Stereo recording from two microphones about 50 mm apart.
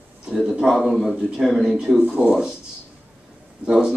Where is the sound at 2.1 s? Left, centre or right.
Centre.